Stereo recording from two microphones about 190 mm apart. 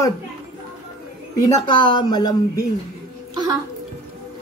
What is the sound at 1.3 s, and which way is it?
Speech, 20° left (ahead or behind).